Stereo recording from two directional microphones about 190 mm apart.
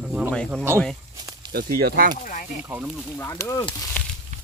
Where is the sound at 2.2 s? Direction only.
45° left (ahead or behind).